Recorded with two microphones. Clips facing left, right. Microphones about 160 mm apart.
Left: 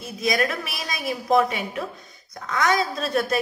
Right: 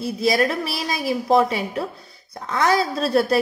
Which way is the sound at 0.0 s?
30° right (ahead or behind).